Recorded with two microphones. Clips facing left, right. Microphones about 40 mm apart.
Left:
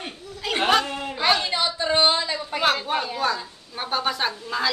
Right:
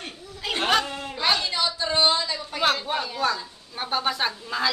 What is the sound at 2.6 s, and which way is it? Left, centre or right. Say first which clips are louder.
A woman's voice: left 1 dB; centre.